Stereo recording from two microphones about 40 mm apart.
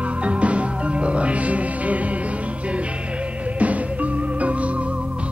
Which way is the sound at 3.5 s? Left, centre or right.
Right.